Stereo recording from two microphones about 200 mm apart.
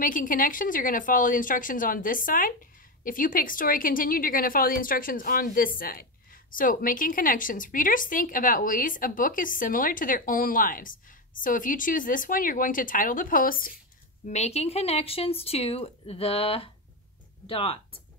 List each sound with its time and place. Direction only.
0.0 s a woman's voice: 40° left (ahead or behind)
14.2 s speech: 35° left (ahead or behind)